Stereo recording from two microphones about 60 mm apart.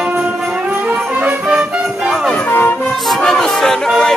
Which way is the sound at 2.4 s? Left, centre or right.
Left.